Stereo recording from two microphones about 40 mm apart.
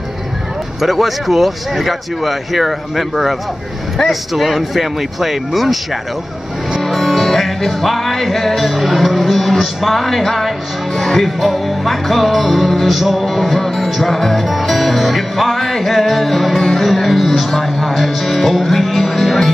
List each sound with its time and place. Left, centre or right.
0.7 s music: centre
6.8 s music: centre